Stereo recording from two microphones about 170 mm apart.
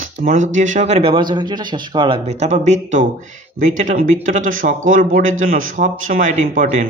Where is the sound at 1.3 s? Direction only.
25° right (ahead or behind).